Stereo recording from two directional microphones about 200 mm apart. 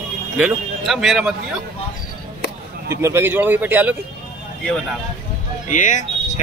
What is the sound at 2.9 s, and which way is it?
A man's voice, 15° right (ahead or behind).